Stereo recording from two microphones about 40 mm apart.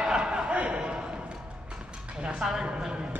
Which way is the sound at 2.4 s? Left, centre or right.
Centre.